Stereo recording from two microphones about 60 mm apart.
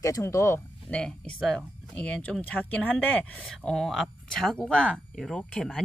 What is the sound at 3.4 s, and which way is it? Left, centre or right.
Speech, centre.